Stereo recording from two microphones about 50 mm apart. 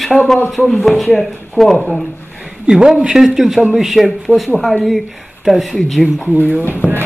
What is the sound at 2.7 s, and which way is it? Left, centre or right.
A man's voice, centre.